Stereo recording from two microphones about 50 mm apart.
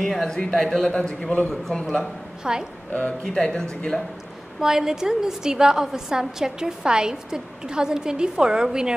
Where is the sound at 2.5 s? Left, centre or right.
Centre.